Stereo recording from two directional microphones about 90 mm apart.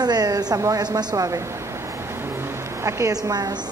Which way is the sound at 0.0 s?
50° right (ahead or behind).